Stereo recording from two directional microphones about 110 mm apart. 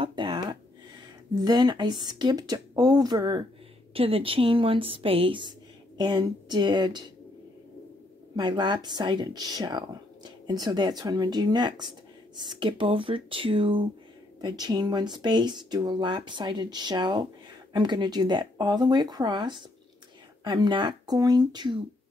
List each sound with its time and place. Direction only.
0.0 s a sound: 45° right (ahead or behind)
1.3 s speech: 40° right (ahead or behind)
3.9 s speech: 60° right (ahead or behind)
5.9 s speech: 40° right (ahead or behind)
8.4 s speech: 45° right (ahead or behind)
14.4 s speech: 40° right (ahead or behind)